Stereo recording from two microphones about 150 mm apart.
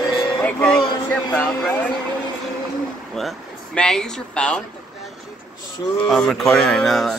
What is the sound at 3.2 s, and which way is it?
Speech, 5° left (ahead or behind).